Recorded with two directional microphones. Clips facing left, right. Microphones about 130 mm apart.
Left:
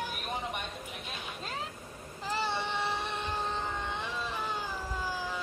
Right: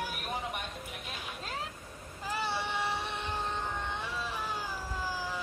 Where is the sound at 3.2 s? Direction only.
15° left (ahead or behind).